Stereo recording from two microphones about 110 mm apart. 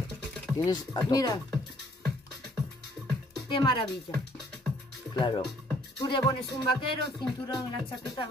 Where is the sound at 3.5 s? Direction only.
50° left (ahead or behind).